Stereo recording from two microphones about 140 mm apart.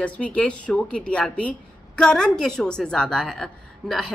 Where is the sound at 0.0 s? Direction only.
10° left (ahead or behind).